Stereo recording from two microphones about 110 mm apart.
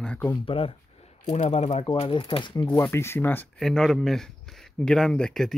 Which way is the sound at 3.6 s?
5° left (ahead or behind).